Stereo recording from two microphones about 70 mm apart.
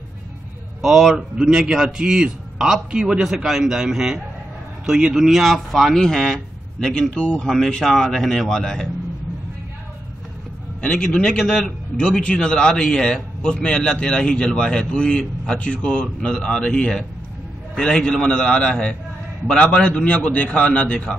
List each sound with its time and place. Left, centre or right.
0.8 s a man's voice: centre
10.8 s a man's voice: centre